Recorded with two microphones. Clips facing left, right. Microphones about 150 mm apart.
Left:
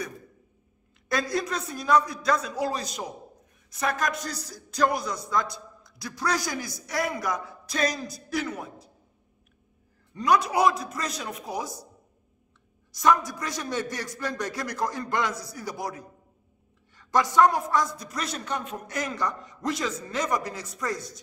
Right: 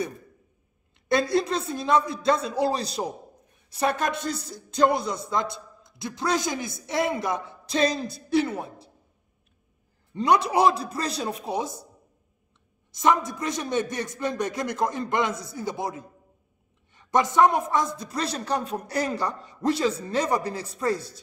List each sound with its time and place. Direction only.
1.0 s a man's voice: 30° right (ahead or behind)
10.1 s a man's voice: 25° right (ahead or behind)
12.9 s a man's voice: 25° right (ahead or behind)